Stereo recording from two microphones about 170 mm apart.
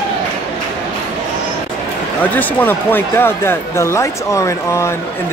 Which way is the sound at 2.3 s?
10° left (ahead or behind).